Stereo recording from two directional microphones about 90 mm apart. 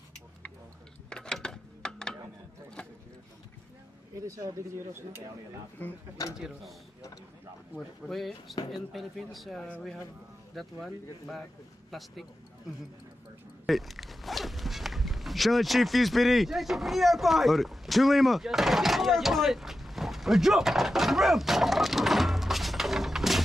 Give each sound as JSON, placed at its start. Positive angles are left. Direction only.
{"t": 1.1, "sound": "a sound", "side_deg": 5}
{"t": 4.3, "sound": "speech", "side_deg": -30}
{"t": 6.3, "sound": "speech", "side_deg": -5}
{"t": 8.0, "sound": "speech", "side_deg": 0}
{"t": 13.7, "sound": "speech", "side_deg": 0}